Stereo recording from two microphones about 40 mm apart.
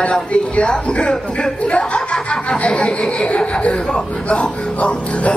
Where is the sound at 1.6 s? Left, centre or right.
Left.